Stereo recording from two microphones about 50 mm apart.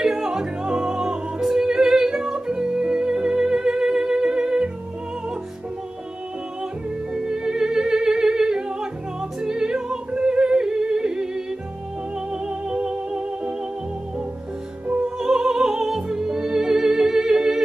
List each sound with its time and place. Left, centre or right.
0.0 s music: centre
7.2 s music: centre
15.1 s music: centre